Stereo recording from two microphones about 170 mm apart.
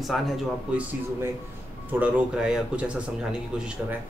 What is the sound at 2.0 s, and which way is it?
Speech, 5° right (ahead or behind).